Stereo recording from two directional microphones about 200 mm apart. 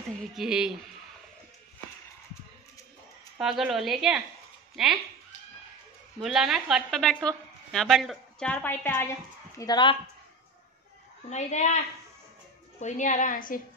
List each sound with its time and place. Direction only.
0.4 s a woman's voice: 5° right (ahead or behind)
3.3 s a woman's voice: centre (ahead or behind)
6.2 s a woman's voice: centre (ahead or behind)
9.6 s speech: 20° left (ahead or behind)
11.2 s a woman's voice: 35° left (ahead or behind)
12.8 s a woman's voice: 35° left (ahead or behind)